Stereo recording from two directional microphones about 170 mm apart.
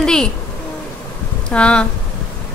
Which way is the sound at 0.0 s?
5° left (ahead or behind).